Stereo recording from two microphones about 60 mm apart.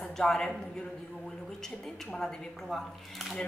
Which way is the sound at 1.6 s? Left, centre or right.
Centre.